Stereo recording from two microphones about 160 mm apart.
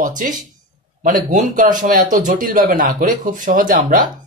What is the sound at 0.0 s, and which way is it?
Speech, 55° right (ahead or behind).